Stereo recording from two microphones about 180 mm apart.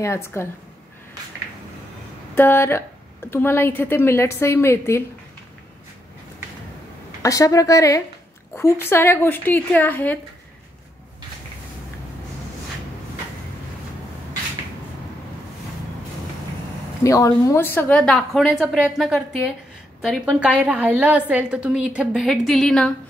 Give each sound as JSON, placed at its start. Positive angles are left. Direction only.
{"t": 0.0, "sound": "a woman's voice", "side_deg": 15}
{"t": 2.3, "sound": "a woman's voice", "side_deg": 10}
{"t": 7.2, "sound": "a woman's voice", "side_deg": 20}
{"t": 17.0, "sound": "a woman's voice", "side_deg": 20}